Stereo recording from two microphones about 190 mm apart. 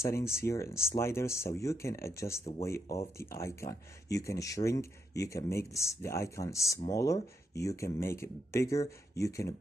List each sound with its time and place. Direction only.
0.0 s speech: 15° left (ahead or behind)